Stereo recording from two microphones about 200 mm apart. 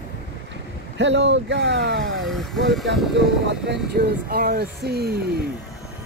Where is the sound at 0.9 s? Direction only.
60° right (ahead or behind).